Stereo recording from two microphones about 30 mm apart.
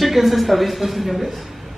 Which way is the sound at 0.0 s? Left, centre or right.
Centre.